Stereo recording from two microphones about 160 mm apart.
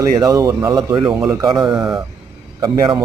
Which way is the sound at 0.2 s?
25° right (ahead or behind).